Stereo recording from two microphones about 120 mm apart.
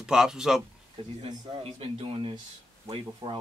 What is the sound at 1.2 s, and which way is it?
Speech, 50° right (ahead or behind).